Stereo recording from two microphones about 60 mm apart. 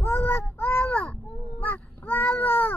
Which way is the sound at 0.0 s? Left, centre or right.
Left.